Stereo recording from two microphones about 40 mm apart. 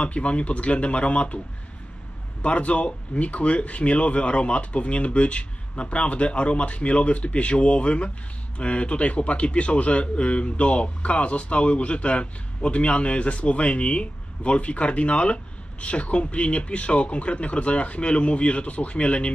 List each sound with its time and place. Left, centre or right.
0.0 s a man's voice: left
2.4 s a man's voice: left